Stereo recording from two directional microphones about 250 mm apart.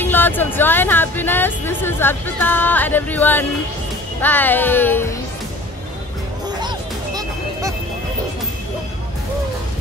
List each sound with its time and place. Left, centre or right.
0.0 s speech: centre